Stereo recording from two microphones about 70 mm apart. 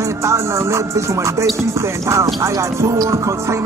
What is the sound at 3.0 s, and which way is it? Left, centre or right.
Music, right.